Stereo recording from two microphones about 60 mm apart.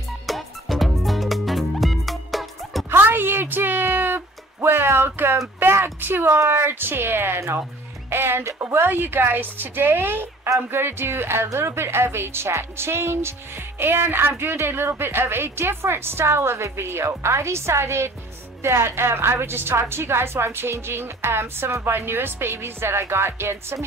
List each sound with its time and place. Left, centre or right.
0.3 s music: centre
2.9 s a sound: right
6.5 s a woman's voice: right